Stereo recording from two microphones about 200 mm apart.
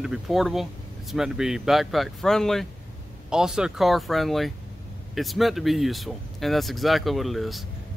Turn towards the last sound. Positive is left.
turn(degrees=0)  # may be behind; listen again after turning